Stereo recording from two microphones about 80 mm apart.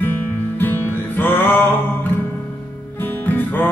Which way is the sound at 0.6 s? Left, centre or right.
Left.